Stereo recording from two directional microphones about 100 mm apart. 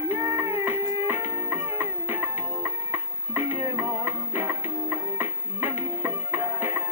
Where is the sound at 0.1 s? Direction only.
25° right (ahead or behind).